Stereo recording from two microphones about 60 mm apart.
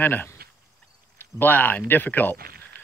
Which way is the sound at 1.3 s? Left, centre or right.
Left.